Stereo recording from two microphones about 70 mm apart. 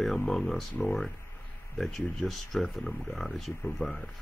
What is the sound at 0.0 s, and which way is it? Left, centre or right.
Speech, centre.